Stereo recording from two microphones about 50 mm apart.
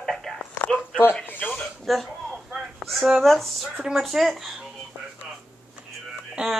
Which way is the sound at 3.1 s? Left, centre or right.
Centre.